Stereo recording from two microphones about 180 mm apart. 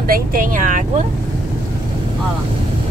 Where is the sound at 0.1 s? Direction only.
50° right (ahead or behind).